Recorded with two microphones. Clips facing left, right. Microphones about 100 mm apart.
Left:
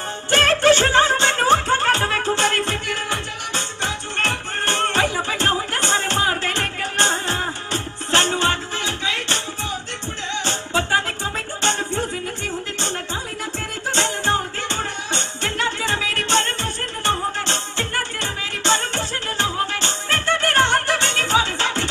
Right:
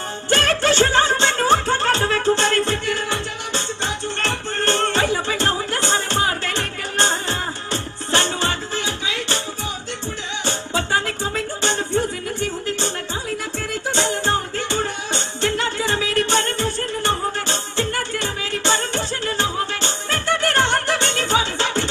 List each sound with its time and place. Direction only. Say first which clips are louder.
0.3 s music: left 3 dB; 15° right (ahead or behind)
10.4 s music: even; 15° right (ahead or behind)
13.9 s music: even; 15° right (ahead or behind)